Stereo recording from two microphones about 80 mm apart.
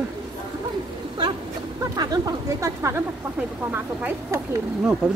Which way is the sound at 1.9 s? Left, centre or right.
Right.